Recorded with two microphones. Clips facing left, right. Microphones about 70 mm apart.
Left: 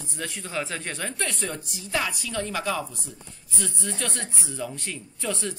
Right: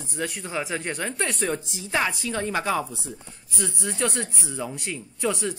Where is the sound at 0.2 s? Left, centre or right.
Centre.